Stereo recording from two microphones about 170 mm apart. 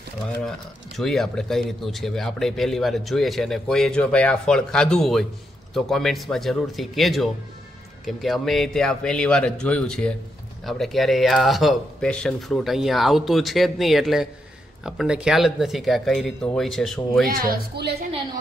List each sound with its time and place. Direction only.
0.4 s a man's voice: 5° left (ahead or behind)
17.3 s a woman's voice: 60° right (ahead or behind)